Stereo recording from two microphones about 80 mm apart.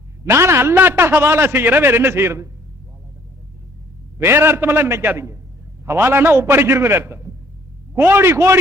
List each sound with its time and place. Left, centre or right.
0.2 s a man's voice: right
4.2 s a man's voice: right